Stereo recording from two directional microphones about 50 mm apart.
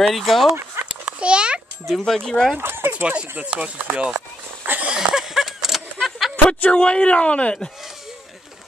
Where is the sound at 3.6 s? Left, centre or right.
Right.